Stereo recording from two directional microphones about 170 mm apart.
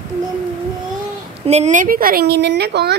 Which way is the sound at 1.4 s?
40° right (ahead or behind).